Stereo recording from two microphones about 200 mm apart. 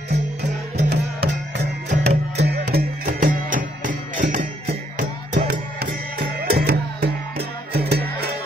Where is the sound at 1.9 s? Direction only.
35° right (ahead or behind).